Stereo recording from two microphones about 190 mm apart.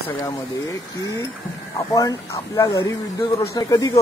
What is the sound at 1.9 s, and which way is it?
Speech, 20° left (ahead or behind).